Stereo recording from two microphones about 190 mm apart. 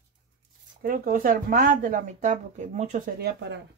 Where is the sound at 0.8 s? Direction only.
45° right (ahead or behind).